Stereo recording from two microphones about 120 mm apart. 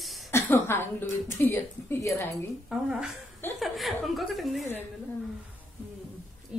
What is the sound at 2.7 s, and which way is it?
Speech, 5° right (ahead or behind).